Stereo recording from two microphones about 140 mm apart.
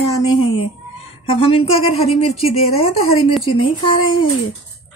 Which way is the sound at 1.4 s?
45° left (ahead or behind).